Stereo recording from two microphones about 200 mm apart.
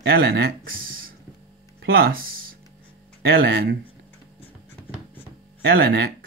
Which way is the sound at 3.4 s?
55° right (ahead or behind).